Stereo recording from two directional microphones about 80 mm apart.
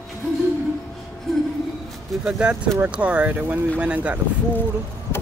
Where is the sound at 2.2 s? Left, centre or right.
Centre.